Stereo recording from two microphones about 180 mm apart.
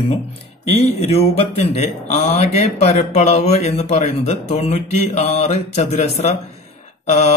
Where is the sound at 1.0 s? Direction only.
35° left (ahead or behind).